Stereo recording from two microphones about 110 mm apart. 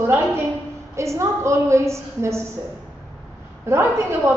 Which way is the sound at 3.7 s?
25° right (ahead or behind).